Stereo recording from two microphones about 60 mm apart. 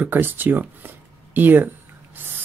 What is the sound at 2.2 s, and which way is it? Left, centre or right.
Gasp, right.